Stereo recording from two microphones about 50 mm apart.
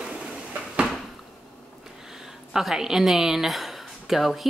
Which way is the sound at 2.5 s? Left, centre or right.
Centre.